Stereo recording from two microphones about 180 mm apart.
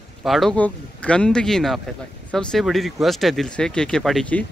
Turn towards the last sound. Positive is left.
turn(degrees=5)  # may be behind; listen again after turning